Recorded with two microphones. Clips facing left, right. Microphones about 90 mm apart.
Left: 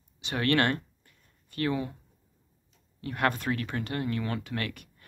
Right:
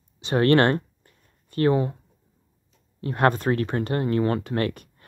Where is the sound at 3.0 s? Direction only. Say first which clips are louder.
Right 7 dB; 35° right (ahead or behind).